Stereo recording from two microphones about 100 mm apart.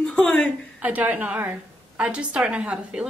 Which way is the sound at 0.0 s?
10° left (ahead or behind).